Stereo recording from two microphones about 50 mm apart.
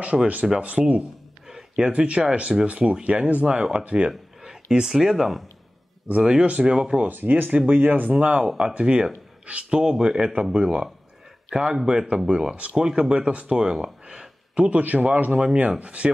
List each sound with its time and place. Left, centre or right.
0.0 s speech: right
3.5 s speech: centre
4.4 s a sound: centre
5.0 s speech: centre
6.1 s speech: right
7.1 s speech: right; by 10.2 s centre
10.2 s speech: right
12.8 s speech: centre
13.1 s speech: right